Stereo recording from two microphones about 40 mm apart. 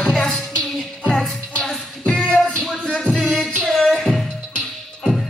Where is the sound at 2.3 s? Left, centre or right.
Left.